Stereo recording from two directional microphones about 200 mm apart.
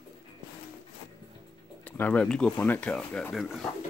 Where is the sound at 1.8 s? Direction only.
10° left (ahead or behind).